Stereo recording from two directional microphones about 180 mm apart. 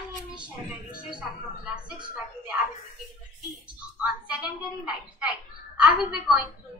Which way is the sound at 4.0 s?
5° right (ahead or behind).